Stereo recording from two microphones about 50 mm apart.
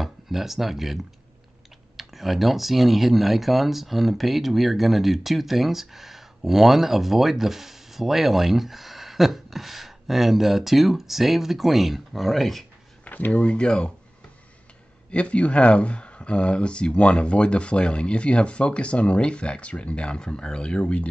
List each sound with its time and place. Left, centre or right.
0.0 s speech: centre
2.0 s speech: centre
13.0 s speech: left
13.6 s speech: centre
15.0 s speech: left